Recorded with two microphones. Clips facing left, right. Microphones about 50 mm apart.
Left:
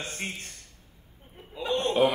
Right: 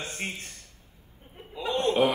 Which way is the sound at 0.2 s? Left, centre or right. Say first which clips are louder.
Right 1 dB; centre.